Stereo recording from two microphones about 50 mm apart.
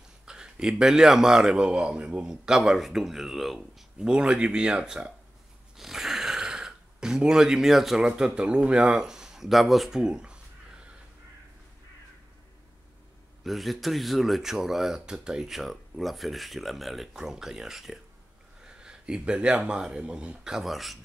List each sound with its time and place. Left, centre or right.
0.2 s a man's voice: centre
4.0 s speech: centre
5.8 s a sound: centre
6.4 s speech: centre
9.9 s speech: centre
13.4 s speech: centre
17.1 s a man's voice: centre
18.7 s speech: centre
20.6 s speech: centre